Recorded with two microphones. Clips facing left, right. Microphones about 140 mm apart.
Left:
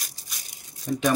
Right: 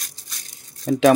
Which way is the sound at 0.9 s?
90° right.